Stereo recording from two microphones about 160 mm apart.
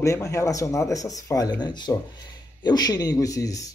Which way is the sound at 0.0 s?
20° left (ahead or behind).